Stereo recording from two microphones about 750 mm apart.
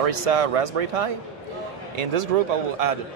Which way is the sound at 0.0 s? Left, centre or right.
Right.